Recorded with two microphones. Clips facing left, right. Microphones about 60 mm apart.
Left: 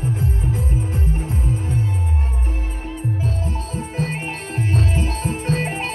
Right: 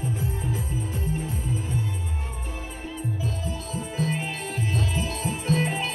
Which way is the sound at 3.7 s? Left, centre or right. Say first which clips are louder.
Left 1 dB; left.